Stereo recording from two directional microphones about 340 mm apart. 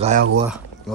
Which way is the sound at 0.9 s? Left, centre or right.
Centre.